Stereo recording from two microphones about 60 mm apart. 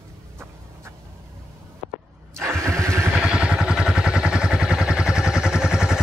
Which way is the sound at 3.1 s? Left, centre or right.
Centre.